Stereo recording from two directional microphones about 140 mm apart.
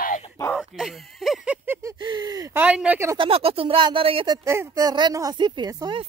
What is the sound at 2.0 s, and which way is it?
Speech, 30° right (ahead or behind).